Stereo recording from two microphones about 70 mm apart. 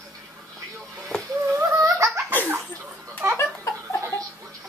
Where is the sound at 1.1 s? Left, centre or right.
Centre.